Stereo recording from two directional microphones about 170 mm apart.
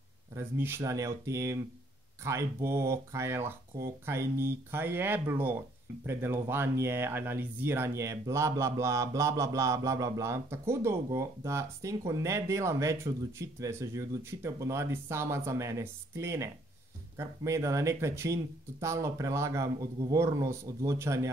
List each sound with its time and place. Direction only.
0.3 s speech: 15° right (ahead or behind)